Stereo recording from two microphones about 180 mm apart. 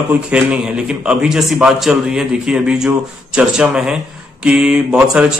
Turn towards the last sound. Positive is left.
turn(degrees=-5)  # may be behind; listen again after turning